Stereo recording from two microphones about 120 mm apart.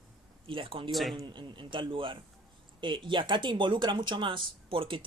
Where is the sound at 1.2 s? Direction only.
40° right (ahead or behind).